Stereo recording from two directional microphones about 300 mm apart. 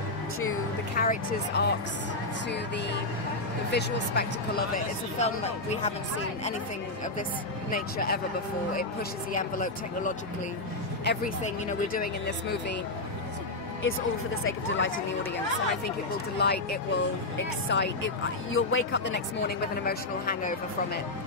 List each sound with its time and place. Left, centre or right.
0.9 s speech: left
3.7 s speech: left
7.7 s speech: left
9.3 s speech: left
14.4 s speech: left
16.3 s speech: left